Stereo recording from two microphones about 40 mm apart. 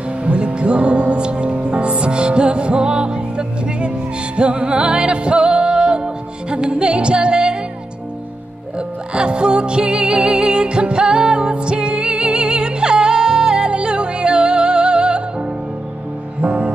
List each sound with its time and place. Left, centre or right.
0.2 s music: right
8.7 s music: right